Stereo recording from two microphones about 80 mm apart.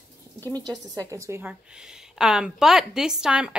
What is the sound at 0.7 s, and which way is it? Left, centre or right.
Speech, right.